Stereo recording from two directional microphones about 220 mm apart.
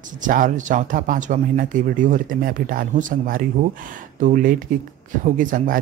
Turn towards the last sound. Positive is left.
turn(degrees=-40)  # may be behind; listen again after turning